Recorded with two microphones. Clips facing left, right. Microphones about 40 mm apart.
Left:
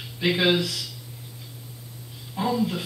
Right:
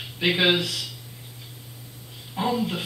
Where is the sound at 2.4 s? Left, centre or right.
Right.